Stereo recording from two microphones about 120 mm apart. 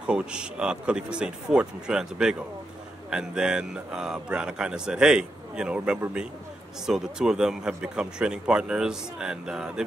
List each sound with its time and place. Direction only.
0.0 s a man's voice: 5° right (ahead or behind)